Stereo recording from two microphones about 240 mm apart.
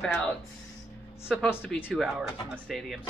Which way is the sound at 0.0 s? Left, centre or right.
Centre.